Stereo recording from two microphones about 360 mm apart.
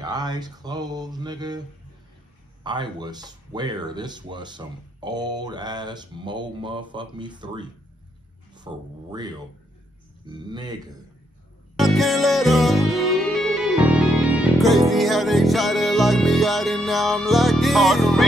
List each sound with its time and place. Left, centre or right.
0.0 s speech: centre
2.6 s speech: centre
10.2 s speech: centre
11.7 s music: centre